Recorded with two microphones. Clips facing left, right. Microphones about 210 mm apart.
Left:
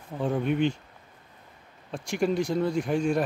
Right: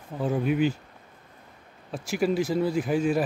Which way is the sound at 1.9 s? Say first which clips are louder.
Right 1 dB; 5° right (ahead or behind).